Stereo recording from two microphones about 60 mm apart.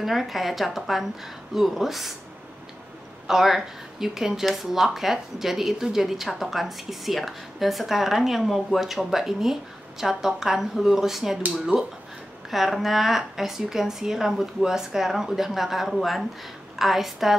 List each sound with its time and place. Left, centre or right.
0.0 s speech: centre
3.3 s speech: centre
11.7 s speech: right
12.4 s speech: centre